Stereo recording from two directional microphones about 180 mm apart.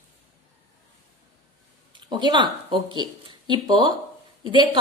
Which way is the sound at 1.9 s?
25° right (ahead or behind).